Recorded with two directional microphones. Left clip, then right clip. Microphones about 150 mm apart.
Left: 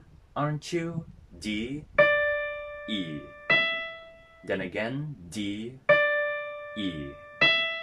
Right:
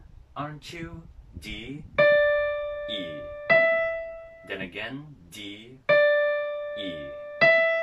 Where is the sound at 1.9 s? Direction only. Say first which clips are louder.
Right 3 dB; 30° right (ahead or behind).